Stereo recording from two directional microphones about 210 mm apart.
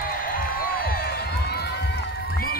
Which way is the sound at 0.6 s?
45° left (ahead or behind).